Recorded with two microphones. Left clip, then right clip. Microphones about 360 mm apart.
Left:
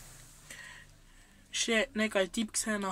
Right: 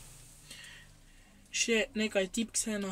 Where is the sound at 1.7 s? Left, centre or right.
Centre.